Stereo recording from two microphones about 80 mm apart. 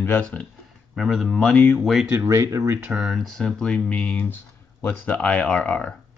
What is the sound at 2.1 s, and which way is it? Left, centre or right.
Speech, right.